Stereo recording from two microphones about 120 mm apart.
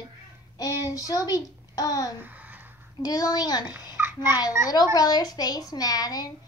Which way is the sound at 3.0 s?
30° left (ahead or behind).